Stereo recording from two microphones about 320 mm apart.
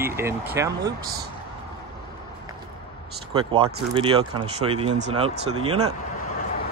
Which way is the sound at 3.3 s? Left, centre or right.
Centre.